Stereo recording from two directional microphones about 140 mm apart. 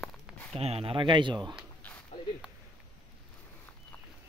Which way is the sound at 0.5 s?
45° right (ahead or behind).